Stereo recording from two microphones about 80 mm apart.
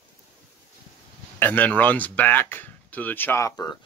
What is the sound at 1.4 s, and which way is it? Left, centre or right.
Speech, left.